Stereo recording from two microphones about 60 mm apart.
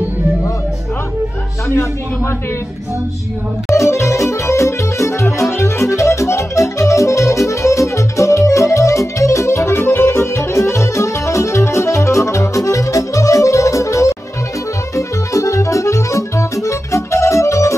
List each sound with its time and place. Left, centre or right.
1.7 s a man's voice: left
3.7 s music: left